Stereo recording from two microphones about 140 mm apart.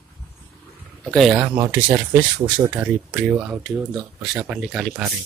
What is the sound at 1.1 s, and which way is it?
Speech, centre (ahead or behind).